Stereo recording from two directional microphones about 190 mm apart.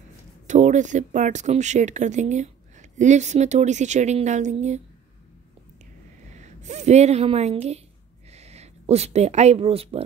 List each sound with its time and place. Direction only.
0.5 s speech: 40° right (ahead or behind)
6.3 s speech: 40° right (ahead or behind)